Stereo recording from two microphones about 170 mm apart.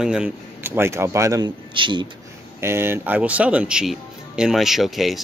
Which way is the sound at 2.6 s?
15° right (ahead or behind).